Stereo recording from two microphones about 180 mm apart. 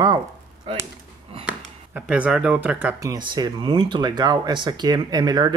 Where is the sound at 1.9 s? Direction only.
5° right (ahead or behind).